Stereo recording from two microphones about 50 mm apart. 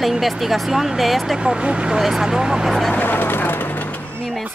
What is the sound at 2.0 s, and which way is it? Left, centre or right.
Speech, centre.